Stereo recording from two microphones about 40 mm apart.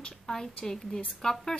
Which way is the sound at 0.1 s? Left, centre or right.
Centre.